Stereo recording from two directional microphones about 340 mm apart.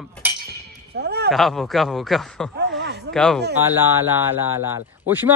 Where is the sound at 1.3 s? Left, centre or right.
Centre.